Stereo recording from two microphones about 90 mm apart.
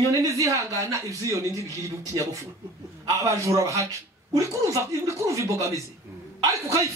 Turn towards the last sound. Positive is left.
turn(degrees=-35)  # may be behind; listen again after turning